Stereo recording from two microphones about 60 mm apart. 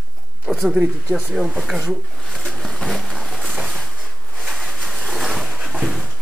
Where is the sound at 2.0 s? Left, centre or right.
Centre.